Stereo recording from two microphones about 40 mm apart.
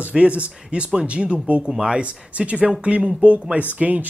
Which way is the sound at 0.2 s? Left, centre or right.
Right.